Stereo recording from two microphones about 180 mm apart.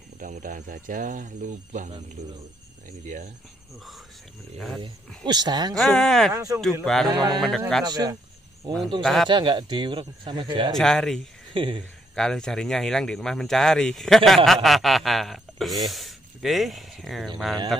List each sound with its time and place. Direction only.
0.2 s speech: 45° right (ahead or behind)
4.8 s speech: 25° right (ahead or behind)
5.8 s speech: centre (ahead or behind)
6.3 s speech: 20° right (ahead or behind)
6.6 s speech: centre (ahead or behind)
7.1 s speech: 20° right (ahead or behind)
7.3 s speech: 5° left (ahead or behind)
7.8 s speech: 20° right (ahead or behind)
9.0 s speech: centre (ahead or behind)
9.3 s speech: 25° right (ahead or behind)
10.7 s speech: centre (ahead or behind)
11.5 s speech: 30° right (ahead or behind)
12.2 s speech: 5° left (ahead or behind)